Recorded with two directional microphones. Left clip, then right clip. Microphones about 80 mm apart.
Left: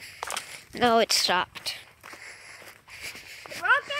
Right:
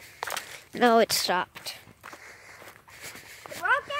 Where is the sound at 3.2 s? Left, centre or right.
Right.